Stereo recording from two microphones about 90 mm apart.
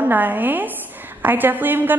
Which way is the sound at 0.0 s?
20° right (ahead or behind).